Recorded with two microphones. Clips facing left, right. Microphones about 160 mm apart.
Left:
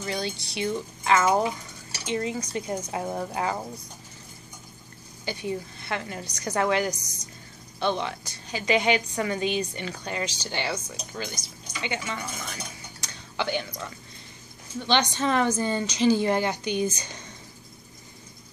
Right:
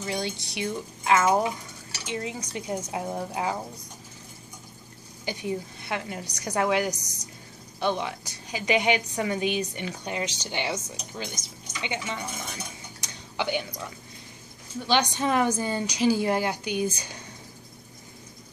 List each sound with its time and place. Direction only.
0.0 s a woman's voice: 15° right (ahead or behind)
5.2 s a woman's voice: 15° right (ahead or behind)
13.0 s a sound: 15° right (ahead or behind)
14.8 s a woman's voice: 10° right (ahead or behind)